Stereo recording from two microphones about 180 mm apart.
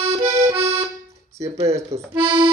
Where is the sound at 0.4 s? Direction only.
30° right (ahead or behind).